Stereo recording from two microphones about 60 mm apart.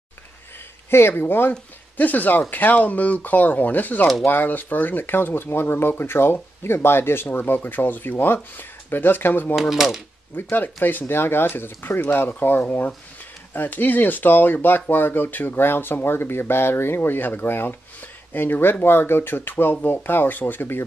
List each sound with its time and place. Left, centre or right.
0.8 s speech: left
9.6 s speech: centre
10.5 s speech: left